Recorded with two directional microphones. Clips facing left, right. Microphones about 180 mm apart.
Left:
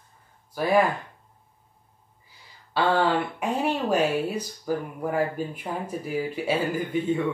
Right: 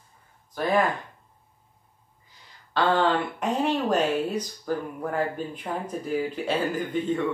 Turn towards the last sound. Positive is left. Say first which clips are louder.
# left 1 dB
turn(degrees=10)  # may be behind; listen again after turning